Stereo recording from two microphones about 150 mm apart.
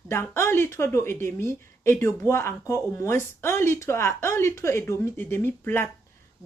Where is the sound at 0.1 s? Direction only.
15° left (ahead or behind).